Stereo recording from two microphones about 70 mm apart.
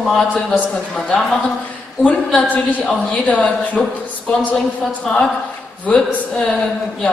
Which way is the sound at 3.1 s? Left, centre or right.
Left.